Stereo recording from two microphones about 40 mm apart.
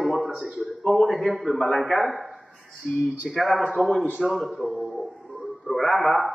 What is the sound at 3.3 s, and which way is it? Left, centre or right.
A man's voice, centre.